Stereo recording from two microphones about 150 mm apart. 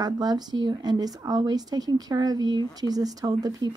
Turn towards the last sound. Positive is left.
turn(degrees=-25)  # may be behind; listen again after turning